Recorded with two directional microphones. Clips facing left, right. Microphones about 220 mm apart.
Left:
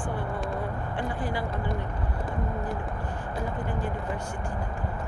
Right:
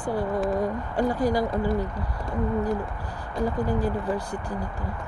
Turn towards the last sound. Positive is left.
turn(degrees=-35)  # may be behind; listen again after turning